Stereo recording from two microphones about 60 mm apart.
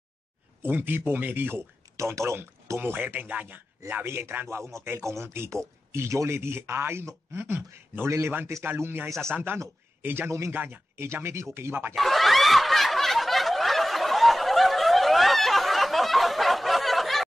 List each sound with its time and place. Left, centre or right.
0.6 s speech: right
2.0 s speech: right
4.0 s speech: right
11.1 s speech: right
11.9 s snicker: centre